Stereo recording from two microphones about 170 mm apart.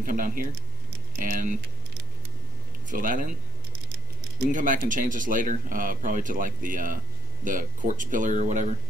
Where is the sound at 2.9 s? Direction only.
50° right (ahead or behind).